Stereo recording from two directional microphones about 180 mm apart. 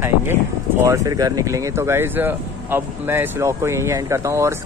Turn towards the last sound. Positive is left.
turn(degrees=-15)  # may be behind; listen again after turning